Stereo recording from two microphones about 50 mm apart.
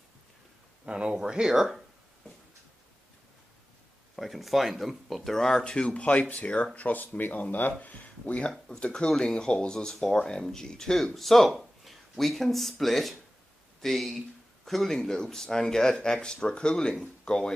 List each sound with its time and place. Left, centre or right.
0.8 s speech: right
4.2 s speech: centre